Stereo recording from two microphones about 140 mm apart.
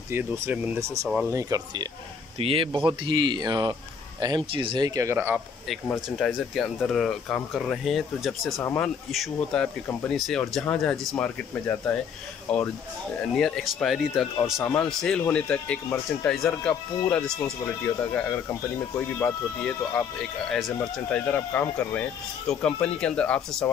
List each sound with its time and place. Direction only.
0.1 s speech: 10° right (ahead or behind)
1.3 s speech: 25° right (ahead or behind)
2.3 s speech: 40° right (ahead or behind); by 5.4 s 15° right (ahead or behind)
5.9 s speech: centre (ahead or behind)
14.4 s speech: 15° left (ahead or behind)